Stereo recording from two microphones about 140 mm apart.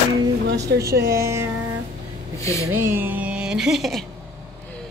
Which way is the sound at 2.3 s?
20° left (ahead or behind).